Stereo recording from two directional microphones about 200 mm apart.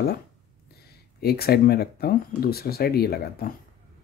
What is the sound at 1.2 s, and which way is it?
Speech, 50° left (ahead or behind).